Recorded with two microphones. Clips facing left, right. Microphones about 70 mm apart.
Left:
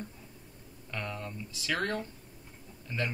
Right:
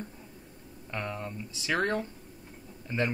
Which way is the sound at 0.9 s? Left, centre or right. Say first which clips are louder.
Right 3 dB; right.